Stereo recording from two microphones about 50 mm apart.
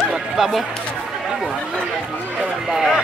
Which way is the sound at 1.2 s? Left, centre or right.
Centre.